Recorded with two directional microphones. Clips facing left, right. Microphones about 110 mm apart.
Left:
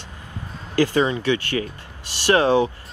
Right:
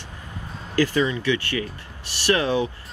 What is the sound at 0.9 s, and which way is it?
Speech, 35° left (ahead or behind).